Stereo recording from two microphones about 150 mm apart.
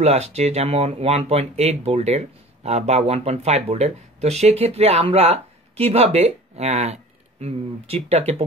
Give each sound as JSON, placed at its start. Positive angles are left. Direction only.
{"t": 0.0, "sound": "speech", "side_deg": -45}